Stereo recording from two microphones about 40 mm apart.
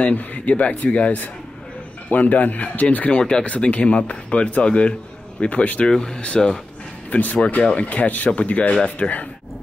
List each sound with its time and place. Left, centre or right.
0.0 s speech: left
2.0 s speech: left
3.1 s speech: left
3.4 s speech: left
5.9 s speech: centre
7.1 s speech: left
9.0 s speech: left